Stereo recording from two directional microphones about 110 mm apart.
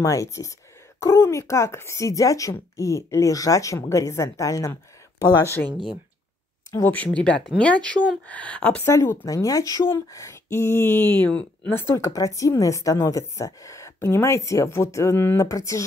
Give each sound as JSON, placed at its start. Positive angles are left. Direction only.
{"t": 0.0, "sound": "speech", "side_deg": 30}
{"t": 5.7, "sound": "speech", "side_deg": -50}
{"t": 6.7, "sound": "speech", "side_deg": 20}
{"t": 8.8, "sound": "speech", "side_deg": 25}
{"t": 12.0, "sound": "speech", "side_deg": 30}